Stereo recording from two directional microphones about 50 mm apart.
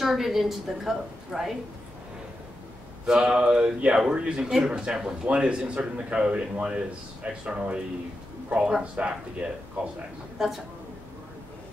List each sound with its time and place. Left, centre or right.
0.0 s a woman's voice: centre
3.1 s speech: centre